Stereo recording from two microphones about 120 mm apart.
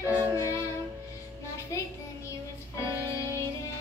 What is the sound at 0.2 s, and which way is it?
Music, 25° right (ahead or behind).